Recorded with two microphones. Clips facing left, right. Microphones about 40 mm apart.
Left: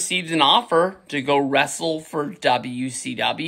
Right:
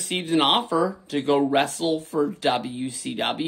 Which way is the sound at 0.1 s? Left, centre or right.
Left.